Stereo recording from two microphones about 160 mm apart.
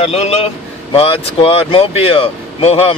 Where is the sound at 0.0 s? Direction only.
40° left (ahead or behind).